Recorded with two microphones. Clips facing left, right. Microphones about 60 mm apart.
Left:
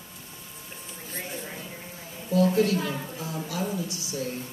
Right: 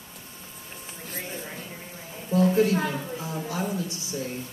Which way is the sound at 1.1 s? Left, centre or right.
Centre.